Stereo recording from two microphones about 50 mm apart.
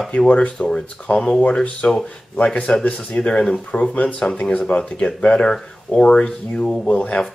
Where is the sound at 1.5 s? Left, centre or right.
Left.